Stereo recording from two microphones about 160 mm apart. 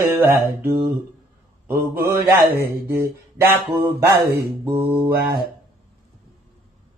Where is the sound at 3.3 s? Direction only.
15° right (ahead or behind).